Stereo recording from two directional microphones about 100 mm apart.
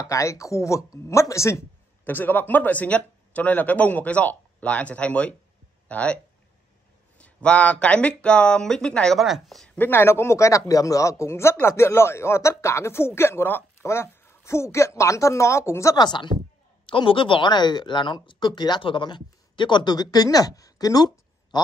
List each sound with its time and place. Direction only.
0.0 s speech: 30° left (ahead or behind)
2.0 s speech: 20° left (ahead or behind)
7.2 s speech: 15° left (ahead or behind)
9.8 s speech: 20° left (ahead or behind)
16.0 s speech: 50° left (ahead or behind)